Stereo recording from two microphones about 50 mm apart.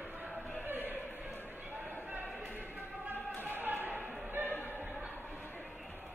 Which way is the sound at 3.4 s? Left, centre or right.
Right.